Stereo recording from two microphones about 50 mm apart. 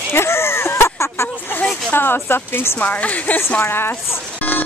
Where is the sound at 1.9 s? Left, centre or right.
Left.